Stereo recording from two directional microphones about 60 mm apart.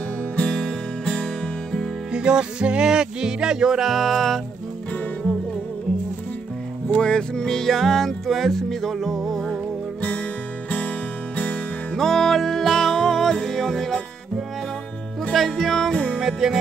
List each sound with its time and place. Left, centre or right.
0.4 s music: centre
2.1 s music: centre
7.0 s music: centre
11.3 s music: left
12.0 s music: centre
15.3 s music: centre
16.2 s music: centre